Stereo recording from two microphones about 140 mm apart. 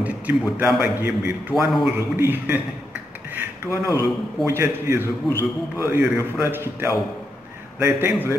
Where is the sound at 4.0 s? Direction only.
20° right (ahead or behind).